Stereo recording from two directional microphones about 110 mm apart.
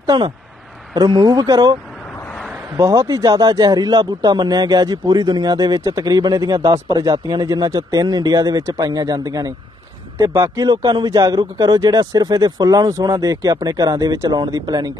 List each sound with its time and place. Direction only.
0.0 s speech: 40° right (ahead or behind)
2.8 s speech: 30° right (ahead or behind)